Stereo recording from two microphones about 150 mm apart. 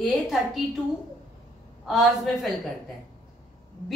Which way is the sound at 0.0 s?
Centre (ahead or behind).